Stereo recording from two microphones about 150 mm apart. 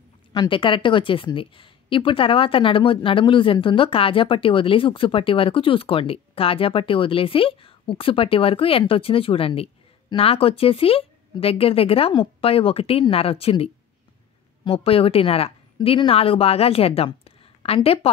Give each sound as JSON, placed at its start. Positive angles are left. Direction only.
{"t": 0.3, "sound": "speech", "side_deg": 30}